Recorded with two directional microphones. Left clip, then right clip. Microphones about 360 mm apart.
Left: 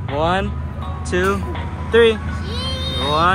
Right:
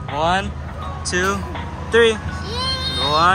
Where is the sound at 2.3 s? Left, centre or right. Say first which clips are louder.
Right 3 dB; right.